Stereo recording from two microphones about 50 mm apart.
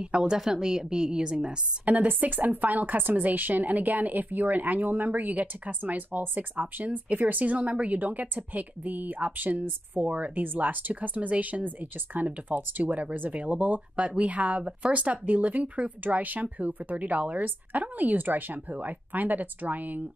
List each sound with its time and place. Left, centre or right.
0.0 s a woman's voice: centre
1.9 s a woman's voice: right